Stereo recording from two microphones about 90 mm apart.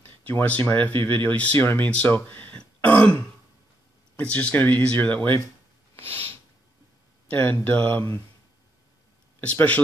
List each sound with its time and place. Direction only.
0.3 s speech: 20° left (ahead or behind)
2.5 s throat clearing: 20° left (ahead or behind)
4.2 s speech: 15° left (ahead or behind)
5.9 s a sound: 90° right
7.2 s speech: 20° left (ahead or behind)
9.4 s speech: 15° left (ahead or behind)